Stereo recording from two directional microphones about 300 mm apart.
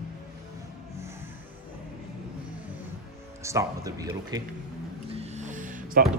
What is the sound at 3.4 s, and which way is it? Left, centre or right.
A man's voice, centre.